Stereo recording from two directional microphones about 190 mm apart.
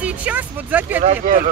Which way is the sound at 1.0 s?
45° right (ahead or behind).